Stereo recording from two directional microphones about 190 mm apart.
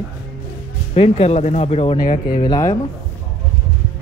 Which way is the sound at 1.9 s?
45° left (ahead or behind).